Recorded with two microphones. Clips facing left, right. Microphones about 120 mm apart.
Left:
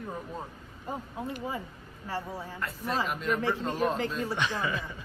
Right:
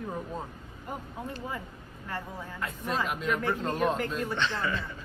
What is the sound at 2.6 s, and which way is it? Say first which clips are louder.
Speech: even; centre (ahead or behind).